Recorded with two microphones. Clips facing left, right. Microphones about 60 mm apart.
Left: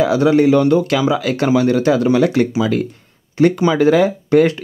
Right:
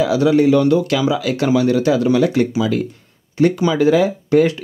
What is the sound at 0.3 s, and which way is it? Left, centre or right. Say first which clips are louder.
Speech: even; left.